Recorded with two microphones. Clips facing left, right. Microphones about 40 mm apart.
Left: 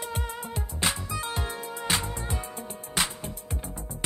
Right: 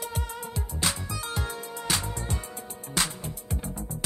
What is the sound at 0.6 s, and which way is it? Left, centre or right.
Music, left.